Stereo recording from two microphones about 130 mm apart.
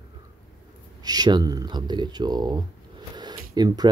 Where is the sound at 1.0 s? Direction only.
30° right (ahead or behind).